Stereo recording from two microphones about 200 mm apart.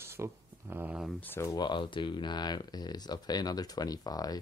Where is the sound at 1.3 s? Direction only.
15° left (ahead or behind).